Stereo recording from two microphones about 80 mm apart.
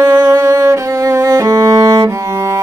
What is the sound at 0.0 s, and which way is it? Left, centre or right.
Music, right.